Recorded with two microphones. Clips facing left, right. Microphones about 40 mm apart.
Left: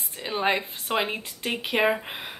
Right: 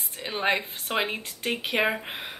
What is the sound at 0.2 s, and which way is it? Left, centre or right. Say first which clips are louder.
A woman's voice: left 1 dB; centre.